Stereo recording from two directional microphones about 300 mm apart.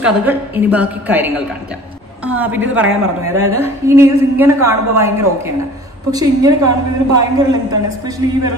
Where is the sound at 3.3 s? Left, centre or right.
Right.